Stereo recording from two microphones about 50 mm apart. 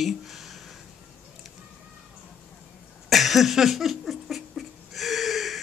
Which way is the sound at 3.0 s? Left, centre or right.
Centre.